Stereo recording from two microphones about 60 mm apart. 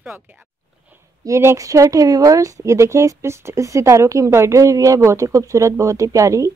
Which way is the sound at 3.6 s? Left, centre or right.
Right.